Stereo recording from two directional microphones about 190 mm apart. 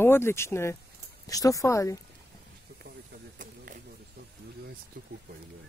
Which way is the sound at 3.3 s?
45° right (ahead or behind).